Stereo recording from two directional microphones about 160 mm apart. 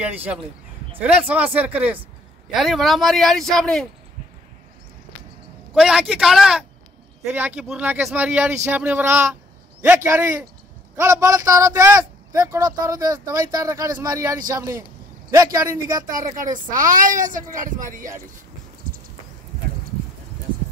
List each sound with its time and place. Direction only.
0.0 s speech: 10° right (ahead or behind)
5.8 s a man's voice: 5° right (ahead or behind); by 16.3 s 20° right (ahead or behind)
16.7 s speech: 55° right (ahead or behind)
18.9 s heart sounds: 65° right (ahead or behind)